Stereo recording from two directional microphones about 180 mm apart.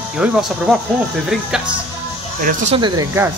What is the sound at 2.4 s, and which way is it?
Speech, 45° right (ahead or behind).